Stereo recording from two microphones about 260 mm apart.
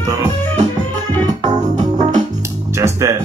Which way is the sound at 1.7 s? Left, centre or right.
Right.